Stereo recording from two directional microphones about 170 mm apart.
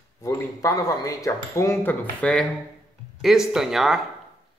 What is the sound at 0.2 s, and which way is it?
Speech, 20° left (ahead or behind).